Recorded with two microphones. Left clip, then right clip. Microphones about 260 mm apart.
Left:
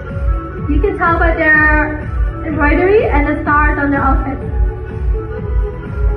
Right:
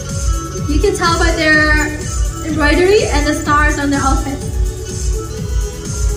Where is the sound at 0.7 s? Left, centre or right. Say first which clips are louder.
Even; right.